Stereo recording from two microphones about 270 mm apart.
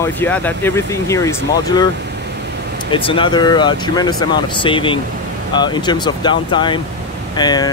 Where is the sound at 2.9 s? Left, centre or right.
Centre.